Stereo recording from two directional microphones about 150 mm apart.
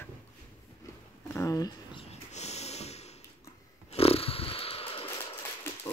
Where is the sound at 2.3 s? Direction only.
45° left (ahead or behind).